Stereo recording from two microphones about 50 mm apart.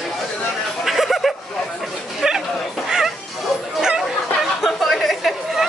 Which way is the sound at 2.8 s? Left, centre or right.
Centre.